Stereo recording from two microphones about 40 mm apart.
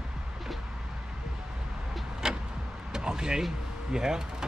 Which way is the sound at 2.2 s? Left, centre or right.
Centre.